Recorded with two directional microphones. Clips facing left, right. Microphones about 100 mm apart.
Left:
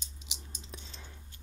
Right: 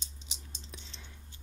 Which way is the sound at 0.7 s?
35° left (ahead or behind).